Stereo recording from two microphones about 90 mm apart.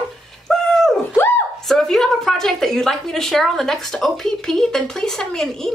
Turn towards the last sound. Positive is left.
turn(degrees=5)  # may be behind; listen again after turning